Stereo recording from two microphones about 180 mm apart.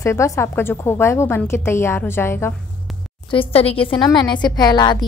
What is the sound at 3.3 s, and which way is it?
A woman's voice, 30° left (ahead or behind).